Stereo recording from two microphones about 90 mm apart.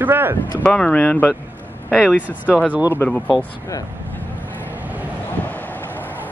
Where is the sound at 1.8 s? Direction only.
10° right (ahead or behind).